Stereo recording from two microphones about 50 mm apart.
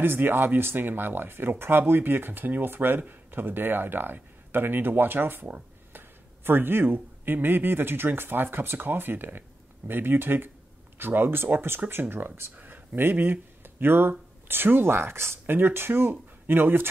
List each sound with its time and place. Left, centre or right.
0.0 s a man's voice: right
15.4 s speech: right